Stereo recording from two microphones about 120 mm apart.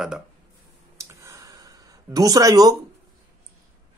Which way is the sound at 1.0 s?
30° right (ahead or behind).